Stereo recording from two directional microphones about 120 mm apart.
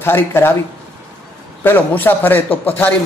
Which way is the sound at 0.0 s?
20° left (ahead or behind).